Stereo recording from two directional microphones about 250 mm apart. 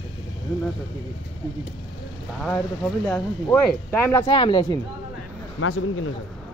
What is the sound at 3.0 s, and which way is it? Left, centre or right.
Speech, centre.